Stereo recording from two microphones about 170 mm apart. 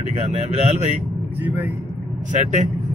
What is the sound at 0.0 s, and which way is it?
Speech, 40° right (ahead or behind).